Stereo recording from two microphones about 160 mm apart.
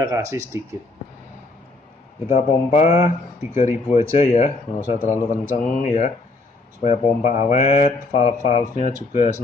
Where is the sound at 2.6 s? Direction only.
45° left (ahead or behind).